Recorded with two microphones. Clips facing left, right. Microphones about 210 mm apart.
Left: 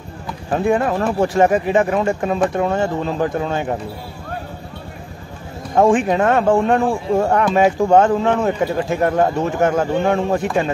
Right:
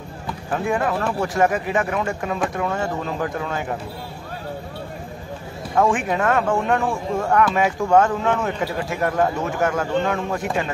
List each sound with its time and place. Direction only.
0.5 s speech: 30° left (ahead or behind)
5.8 s a man's voice: 30° left (ahead or behind)